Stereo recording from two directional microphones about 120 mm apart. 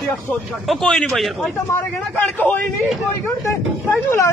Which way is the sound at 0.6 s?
Centre (ahead or behind).